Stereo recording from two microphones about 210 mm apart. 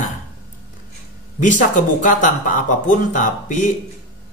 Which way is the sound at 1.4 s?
35° left (ahead or behind).